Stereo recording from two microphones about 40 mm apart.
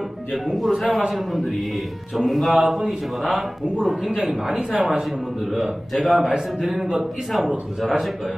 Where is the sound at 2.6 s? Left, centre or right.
Centre.